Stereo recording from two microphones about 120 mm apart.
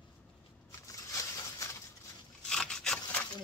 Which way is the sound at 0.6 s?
25° left (ahead or behind).